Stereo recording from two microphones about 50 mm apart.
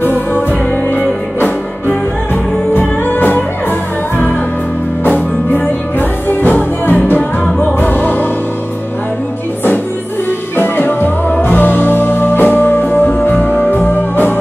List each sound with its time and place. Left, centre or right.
2.7 s music: left
5.0 s music: left
10.6 s music: left